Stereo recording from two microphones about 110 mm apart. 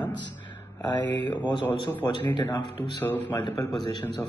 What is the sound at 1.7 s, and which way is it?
A man's voice, 15° left (ahead or behind).